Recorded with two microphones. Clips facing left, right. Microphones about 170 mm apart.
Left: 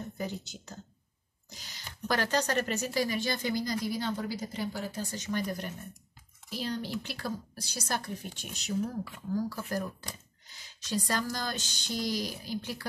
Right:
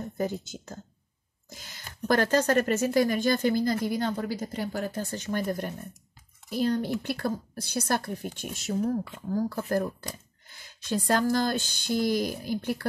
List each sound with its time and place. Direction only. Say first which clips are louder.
0.2 s speech: right 9 dB; 50° right (ahead or behind)